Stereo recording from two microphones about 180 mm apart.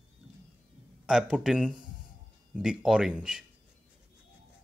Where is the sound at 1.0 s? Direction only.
5° right (ahead or behind).